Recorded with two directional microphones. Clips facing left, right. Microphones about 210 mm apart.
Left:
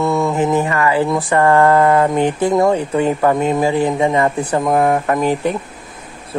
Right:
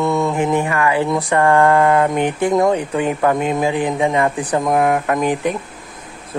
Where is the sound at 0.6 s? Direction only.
15° right (ahead or behind).